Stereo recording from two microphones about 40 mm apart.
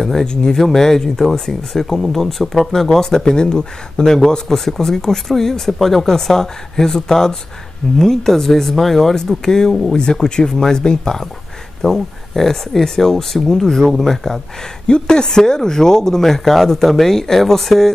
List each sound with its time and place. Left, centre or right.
0.0 s speech: centre
14.9 s speech: centre